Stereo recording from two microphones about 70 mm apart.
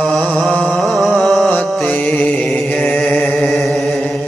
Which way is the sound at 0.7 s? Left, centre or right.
Centre.